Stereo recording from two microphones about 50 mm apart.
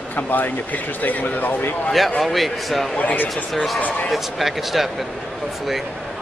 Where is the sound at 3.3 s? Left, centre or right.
Centre.